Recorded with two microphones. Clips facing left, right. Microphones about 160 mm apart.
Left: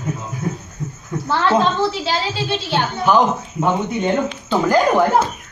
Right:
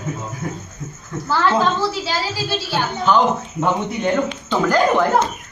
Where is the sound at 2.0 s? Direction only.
20° left (ahead or behind).